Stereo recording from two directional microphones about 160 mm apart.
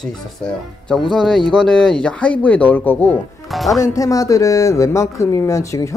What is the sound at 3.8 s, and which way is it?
Speech, 20° left (ahead or behind).